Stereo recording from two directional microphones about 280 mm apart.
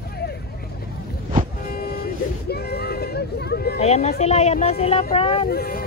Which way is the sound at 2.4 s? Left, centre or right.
Left.